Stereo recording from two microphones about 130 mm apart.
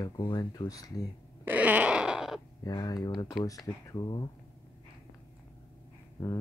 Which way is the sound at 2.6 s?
30° left (ahead or behind).